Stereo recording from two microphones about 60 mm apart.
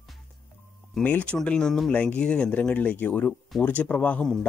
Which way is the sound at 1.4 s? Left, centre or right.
Centre.